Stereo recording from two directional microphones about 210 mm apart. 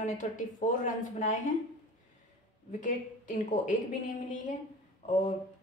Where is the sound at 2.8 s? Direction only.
35° left (ahead or behind).